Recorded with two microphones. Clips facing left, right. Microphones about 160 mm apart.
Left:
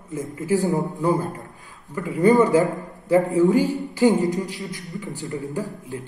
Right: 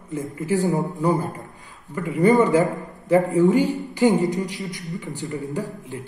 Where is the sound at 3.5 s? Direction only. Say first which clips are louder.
Even; 40° left (ahead or behind).